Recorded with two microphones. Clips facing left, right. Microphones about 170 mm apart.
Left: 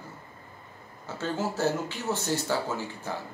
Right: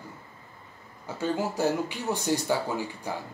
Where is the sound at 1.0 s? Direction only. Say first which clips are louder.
Right 2 dB; 15° right (ahead or behind).